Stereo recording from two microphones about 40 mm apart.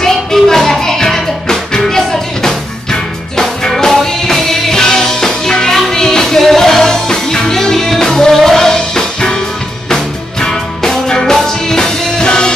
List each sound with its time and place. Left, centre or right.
0.0 s music: centre
10.4 s music: centre